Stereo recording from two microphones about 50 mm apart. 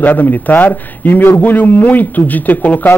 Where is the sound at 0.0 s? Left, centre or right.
Left.